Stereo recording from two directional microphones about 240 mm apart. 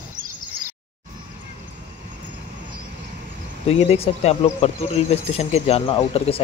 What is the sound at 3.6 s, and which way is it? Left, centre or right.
Speech, left.